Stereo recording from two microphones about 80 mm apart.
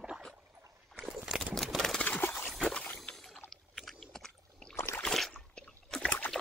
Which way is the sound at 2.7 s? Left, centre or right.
Centre.